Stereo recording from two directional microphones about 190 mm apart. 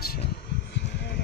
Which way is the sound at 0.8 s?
35° left (ahead or behind).